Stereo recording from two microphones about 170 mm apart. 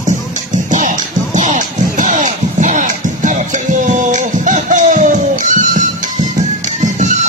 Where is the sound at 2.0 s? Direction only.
45° right (ahead or behind).